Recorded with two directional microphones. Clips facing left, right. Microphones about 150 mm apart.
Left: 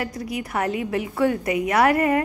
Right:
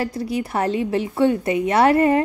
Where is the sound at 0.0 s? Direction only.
30° right (ahead or behind).